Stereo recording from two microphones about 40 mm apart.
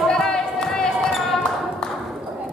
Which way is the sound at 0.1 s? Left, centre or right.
Centre.